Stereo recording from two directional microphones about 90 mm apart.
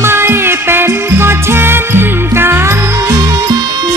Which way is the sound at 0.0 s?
25° right (ahead or behind).